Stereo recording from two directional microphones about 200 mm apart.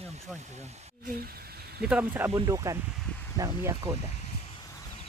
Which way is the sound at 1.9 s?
10° right (ahead or behind).